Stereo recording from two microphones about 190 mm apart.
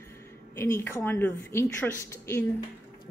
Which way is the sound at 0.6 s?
10° left (ahead or behind).